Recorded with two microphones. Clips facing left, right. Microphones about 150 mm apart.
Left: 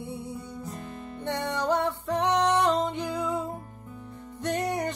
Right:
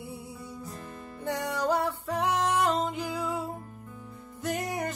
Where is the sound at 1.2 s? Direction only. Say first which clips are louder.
Left 1 dB; 10° right (ahead or behind).